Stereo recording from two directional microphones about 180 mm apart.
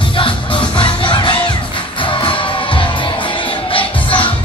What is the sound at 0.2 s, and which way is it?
Music, 25° left (ahead or behind).